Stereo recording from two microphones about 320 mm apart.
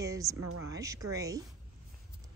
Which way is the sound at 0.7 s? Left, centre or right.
Centre.